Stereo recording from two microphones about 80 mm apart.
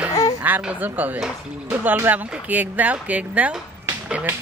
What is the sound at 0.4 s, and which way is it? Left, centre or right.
Speech, right.